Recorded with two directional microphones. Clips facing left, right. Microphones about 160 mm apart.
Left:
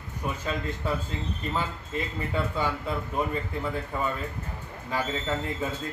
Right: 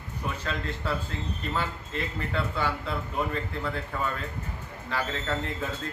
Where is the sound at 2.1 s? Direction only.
15° left (ahead or behind).